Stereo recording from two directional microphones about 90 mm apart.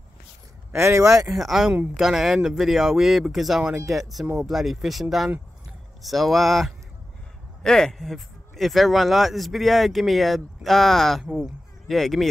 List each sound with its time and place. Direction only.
0.7 s speech: 30° right (ahead or behind)
1.3 s speech: centre (ahead or behind)
6.0 s speech: centre (ahead or behind)